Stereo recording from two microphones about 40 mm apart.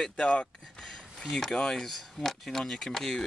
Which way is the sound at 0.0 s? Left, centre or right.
Left.